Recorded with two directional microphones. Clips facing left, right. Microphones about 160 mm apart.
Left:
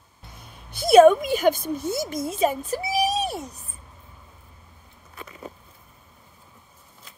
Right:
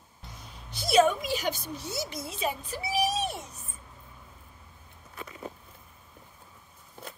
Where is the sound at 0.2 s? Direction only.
55° left (ahead or behind).